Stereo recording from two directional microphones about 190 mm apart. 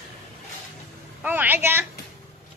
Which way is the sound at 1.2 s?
10° right (ahead or behind).